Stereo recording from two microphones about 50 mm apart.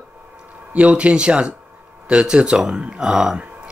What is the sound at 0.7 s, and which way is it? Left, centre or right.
Speech, right.